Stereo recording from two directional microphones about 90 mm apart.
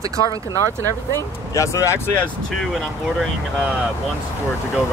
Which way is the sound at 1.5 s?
35° left (ahead or behind).